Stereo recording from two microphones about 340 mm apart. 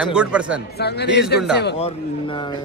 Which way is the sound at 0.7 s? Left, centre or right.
Left.